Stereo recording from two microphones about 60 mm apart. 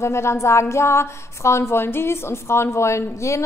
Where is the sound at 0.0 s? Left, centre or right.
Left.